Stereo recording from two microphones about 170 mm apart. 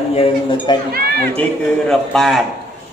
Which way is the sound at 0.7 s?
25° left (ahead or behind).